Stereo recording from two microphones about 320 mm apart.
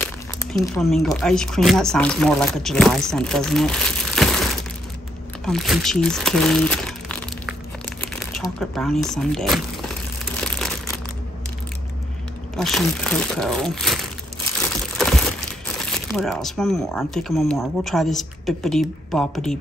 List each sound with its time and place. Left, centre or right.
0.0 s crumpling: centre
1.0 s speech: centre
12.5 s speech: centre
15.9 s speech: centre